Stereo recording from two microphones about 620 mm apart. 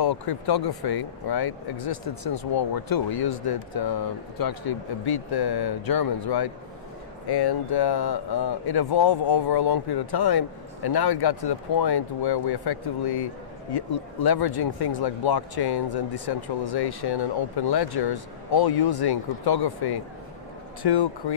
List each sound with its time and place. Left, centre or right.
0.0 s speech: left